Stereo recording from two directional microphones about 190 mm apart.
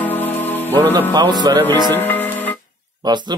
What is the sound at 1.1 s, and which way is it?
Speech, 20° right (ahead or behind).